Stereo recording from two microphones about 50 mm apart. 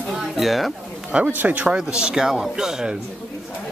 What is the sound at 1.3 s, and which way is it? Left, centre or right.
Speech, right.